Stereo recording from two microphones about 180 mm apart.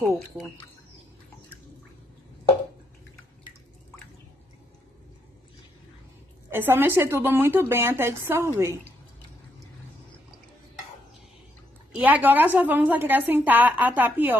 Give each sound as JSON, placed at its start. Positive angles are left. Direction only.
{"t": 0.0, "sound": "a woman's voice", "side_deg": -15}
{"t": 6.5, "sound": "a woman's voice", "side_deg": -15}
{"t": 12.0, "sound": "a woman's voice", "side_deg": -10}